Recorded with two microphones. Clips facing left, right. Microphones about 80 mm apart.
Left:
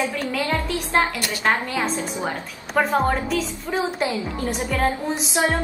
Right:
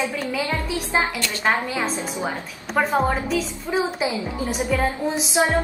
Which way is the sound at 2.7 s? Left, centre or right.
Centre.